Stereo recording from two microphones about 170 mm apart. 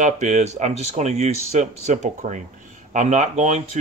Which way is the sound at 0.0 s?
45° right (ahead or behind).